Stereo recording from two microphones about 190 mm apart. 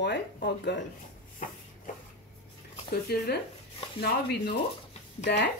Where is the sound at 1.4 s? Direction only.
40° left (ahead or behind).